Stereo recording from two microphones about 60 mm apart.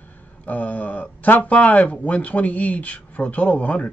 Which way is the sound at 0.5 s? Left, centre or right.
Left.